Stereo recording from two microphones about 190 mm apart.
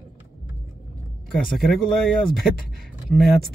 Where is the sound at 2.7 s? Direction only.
Centre (ahead or behind).